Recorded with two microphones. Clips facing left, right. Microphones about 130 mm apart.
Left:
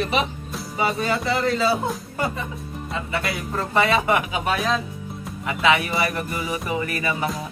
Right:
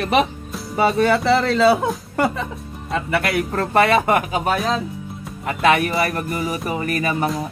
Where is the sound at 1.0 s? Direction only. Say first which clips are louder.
Right 7 dB; 70° right (ahead or behind).